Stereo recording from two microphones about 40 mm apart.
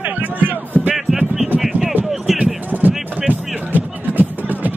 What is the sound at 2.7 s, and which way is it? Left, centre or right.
Music, right.